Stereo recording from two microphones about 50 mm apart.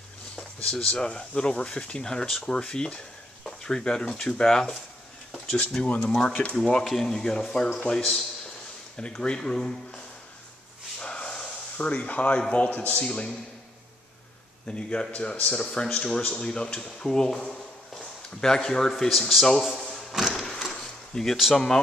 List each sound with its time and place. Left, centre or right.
0.7 s speech: centre
3.4 s a sound: centre
4.1 s speech: centre
6.5 s a man's voice: centre
8.9 s speech: left
11.0 s snort: centre
11.7 s speech: left
12.6 s a man's voice: left
13.0 s speech: left
14.7 s speech: centre
19.7 s drawer open or close: centre
20.1 s a sound: centre
20.3 s a sound: centre